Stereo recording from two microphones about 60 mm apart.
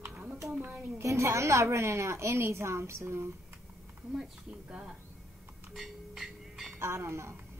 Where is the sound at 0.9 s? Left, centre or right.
Right.